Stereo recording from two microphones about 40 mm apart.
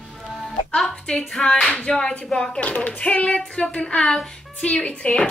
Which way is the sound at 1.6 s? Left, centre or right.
Left.